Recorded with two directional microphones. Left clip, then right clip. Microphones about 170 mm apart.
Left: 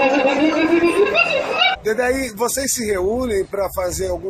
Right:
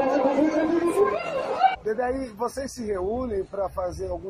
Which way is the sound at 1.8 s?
20° left (ahead or behind).